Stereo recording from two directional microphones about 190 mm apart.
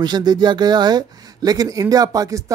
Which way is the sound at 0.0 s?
20° right (ahead or behind).